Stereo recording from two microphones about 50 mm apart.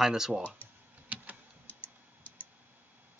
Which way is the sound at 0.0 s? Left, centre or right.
Centre.